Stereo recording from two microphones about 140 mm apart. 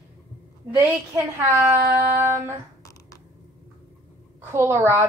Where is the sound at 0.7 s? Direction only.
20° right (ahead or behind).